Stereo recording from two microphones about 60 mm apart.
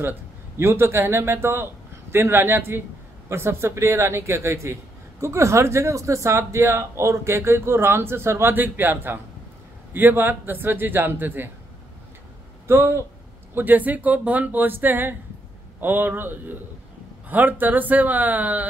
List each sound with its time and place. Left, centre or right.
0.6 s a man's voice: right
8.5 s a man's voice: right
12.6 s a man's voice: right
13.6 s a man's voice: right